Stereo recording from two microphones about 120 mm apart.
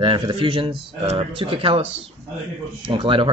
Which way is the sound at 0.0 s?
45° right (ahead or behind).